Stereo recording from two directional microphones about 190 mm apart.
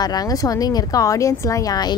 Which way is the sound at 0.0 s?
20° left (ahead or behind).